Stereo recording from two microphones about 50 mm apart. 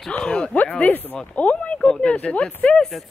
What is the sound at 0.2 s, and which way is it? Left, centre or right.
Speech, centre.